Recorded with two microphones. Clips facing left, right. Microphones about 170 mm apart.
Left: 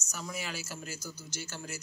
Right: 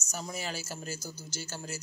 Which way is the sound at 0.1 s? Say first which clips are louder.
Right 2 dB; 35° right (ahead or behind).